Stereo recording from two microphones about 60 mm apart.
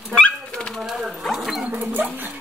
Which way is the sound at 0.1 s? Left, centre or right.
Centre.